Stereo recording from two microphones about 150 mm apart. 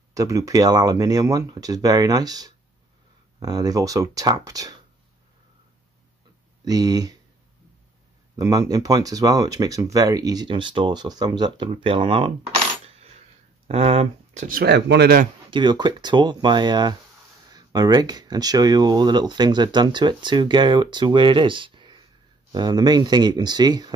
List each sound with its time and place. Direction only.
0.1 s speech: 20° right (ahead or behind)
6.6 s speech: 25° right (ahead or behind)
8.4 s speech: 25° right (ahead or behind)
13.7 s speech: 40° right (ahead or behind)
14.6 s speech: 90° right
15.5 s speech: 30° right (ahead or behind)